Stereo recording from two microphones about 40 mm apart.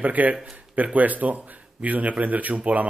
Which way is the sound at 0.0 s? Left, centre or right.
Right.